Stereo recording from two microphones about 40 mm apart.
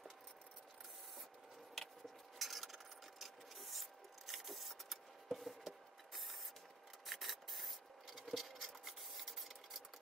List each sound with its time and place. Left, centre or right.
2.3 s rub: centre
4.3 s printer: centre
7.1 s rub: centre
8.3 s a sound: centre